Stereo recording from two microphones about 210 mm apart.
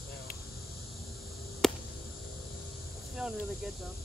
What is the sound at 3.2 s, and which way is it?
Speech, 5° right (ahead or behind).